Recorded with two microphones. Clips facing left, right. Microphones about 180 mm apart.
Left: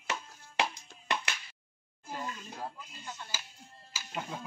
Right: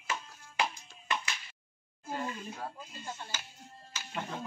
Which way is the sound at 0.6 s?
70° left (ahead or behind).